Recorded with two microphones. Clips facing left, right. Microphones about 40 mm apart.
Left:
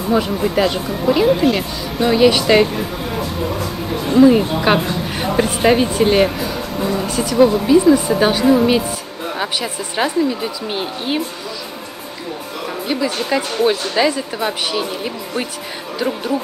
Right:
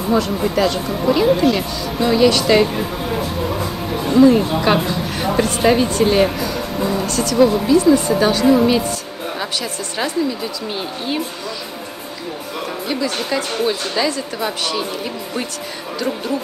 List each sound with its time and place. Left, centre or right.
0.1 s speech: centre
0.8 s speech: centre
2.7 s speech: centre; by 11.2 s left
12.8 s speech: centre